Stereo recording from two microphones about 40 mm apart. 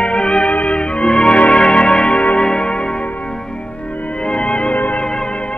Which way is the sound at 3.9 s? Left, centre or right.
Left.